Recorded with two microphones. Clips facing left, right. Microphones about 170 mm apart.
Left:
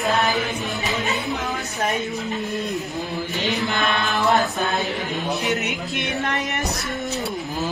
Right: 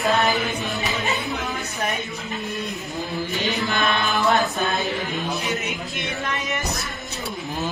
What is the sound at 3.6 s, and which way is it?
Chant, 20° left (ahead or behind).